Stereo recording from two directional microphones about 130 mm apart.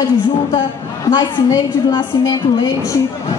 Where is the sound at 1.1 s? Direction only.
35° left (ahead or behind).